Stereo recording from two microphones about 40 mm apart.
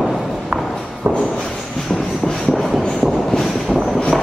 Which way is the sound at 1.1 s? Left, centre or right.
Right.